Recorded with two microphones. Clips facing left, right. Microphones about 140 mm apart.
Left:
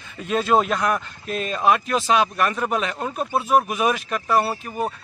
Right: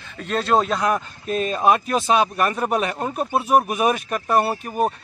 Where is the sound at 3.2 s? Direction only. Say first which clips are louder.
Right 1 dB; 15° right (ahead or behind).